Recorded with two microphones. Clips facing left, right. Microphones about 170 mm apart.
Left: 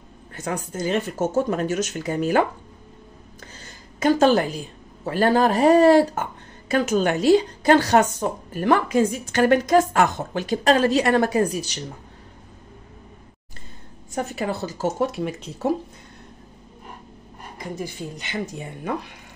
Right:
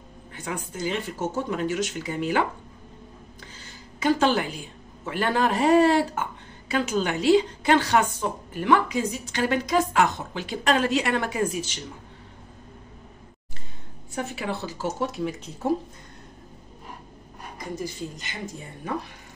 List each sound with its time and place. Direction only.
0.3 s a woman's voice: 45° left (ahead or behind)
4.0 s a woman's voice: 40° left (ahead or behind)
14.1 s a woman's voice: 45° left (ahead or behind)
17.7 s speech: 65° left (ahead or behind)